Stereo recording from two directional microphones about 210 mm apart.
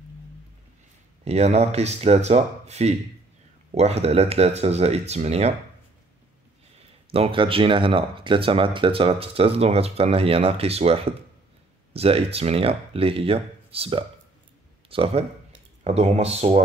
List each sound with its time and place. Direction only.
1.2 s speech: 30° right (ahead or behind)
7.1 s speech: 25° right (ahead or behind)